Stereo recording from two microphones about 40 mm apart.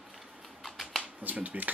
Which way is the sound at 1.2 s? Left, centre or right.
Right.